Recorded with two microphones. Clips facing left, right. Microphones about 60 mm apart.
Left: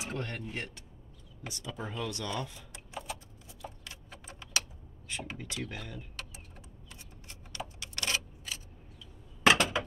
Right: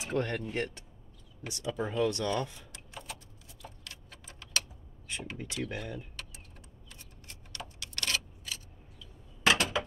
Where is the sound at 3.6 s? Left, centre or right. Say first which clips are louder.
Left 3 dB; centre.